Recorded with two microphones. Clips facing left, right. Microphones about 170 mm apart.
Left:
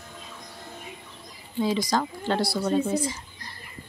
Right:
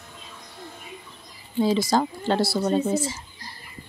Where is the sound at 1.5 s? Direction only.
30° right (ahead or behind).